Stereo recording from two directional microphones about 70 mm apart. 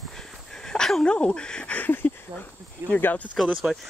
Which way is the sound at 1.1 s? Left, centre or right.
Centre.